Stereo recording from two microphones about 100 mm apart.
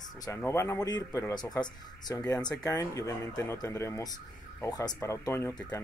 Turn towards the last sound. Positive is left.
turn(degrees=25)  # may be behind; listen again after turning